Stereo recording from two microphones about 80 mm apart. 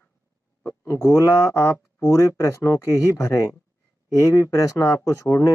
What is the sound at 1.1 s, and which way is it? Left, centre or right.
Speech, left.